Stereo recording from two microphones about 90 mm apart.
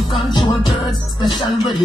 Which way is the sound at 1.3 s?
60° left (ahead or behind).